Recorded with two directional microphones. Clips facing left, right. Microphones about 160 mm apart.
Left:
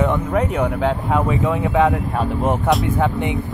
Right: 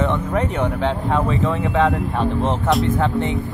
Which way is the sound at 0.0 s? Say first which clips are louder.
Left 2 dB; 10° left (ahead or behind).